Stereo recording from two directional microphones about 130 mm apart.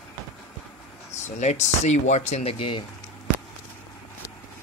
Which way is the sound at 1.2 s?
60° left (ahead or behind).